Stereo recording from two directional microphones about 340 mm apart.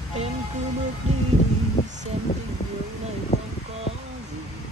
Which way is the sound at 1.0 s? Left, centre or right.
Centre.